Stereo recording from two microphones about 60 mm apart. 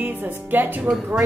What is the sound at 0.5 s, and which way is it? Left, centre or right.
Mantra, right.